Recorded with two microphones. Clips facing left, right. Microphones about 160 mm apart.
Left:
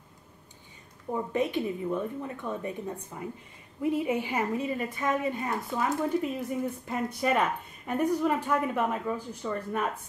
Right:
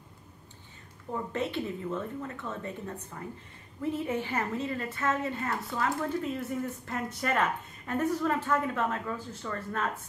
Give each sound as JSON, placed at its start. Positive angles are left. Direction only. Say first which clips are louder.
{"t": 1.1, "sound": "a woman's voice", "louder": "left 4 dB", "side_deg": 15}